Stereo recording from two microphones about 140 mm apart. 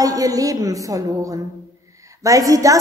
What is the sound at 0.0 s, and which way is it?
A woman's voice, 25° right (ahead or behind).